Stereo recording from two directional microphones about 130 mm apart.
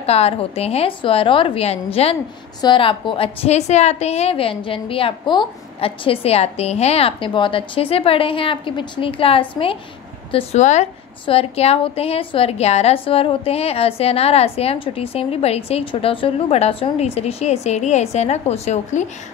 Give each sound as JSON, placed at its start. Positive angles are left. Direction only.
{"t": 0.0, "sound": "a woman's voice", "side_deg": 50}
{"t": 10.3, "sound": "a woman's voice", "side_deg": 60}
{"t": 11.2, "sound": "a woman's voice", "side_deg": 50}